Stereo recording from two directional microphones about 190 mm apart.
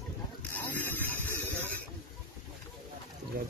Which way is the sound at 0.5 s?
10° left (ahead or behind).